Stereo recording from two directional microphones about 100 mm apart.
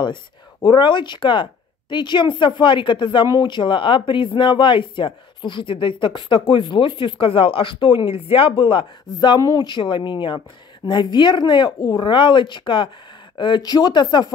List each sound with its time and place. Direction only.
0.0 s speech: 50° left (ahead or behind)